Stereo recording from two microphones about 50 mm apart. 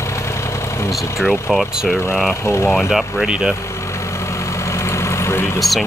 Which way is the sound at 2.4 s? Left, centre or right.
Left.